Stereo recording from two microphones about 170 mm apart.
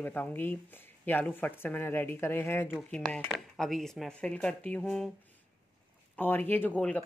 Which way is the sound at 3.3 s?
Centre (ahead or behind).